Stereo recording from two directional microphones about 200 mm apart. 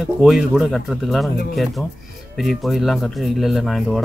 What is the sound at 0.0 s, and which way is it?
Speech, centre (ahead or behind).